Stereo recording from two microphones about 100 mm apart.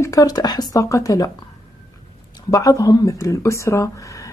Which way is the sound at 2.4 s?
35° left (ahead or behind).